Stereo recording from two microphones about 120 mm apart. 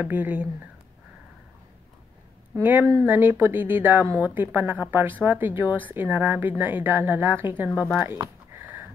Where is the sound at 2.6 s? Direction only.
15° right (ahead or behind).